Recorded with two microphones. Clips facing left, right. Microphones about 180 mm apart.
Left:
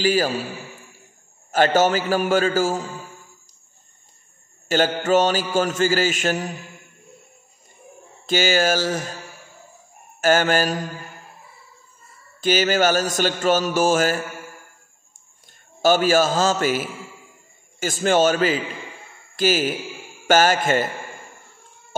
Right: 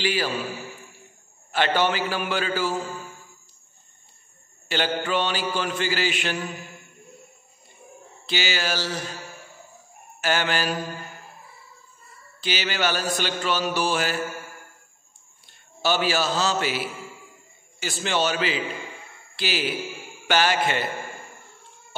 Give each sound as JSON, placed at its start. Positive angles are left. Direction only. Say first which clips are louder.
{"t": 0.0, "sound": "mantra", "louder": "left 5 dB", "side_deg": 40}
{"t": 1.5, "sound": "mantra", "louder": "left 6 dB", "side_deg": 45}
{"t": 4.6, "sound": "mantra", "louder": "left 6 dB", "side_deg": 45}
{"t": 8.3, "sound": "mantra", "louder": "left 8 dB", "side_deg": 45}
{"t": 10.2, "sound": "mantra", "louder": "left 7 dB", "side_deg": 45}
{"t": 12.4, "sound": "mantra", "louder": "left 9 dB", "side_deg": 45}
{"t": 15.4, "sound": "a man's voice", "louder": "left 7 dB", "side_deg": 45}
{"t": 17.7, "sound": "mantra", "louder": "left 7 dB", "side_deg": 45}
{"t": 19.3, "sound": "speech", "louder": "left 8 dB", "side_deg": 45}
{"t": 20.2, "sound": "mantra", "louder": "left 5 dB", "side_deg": 45}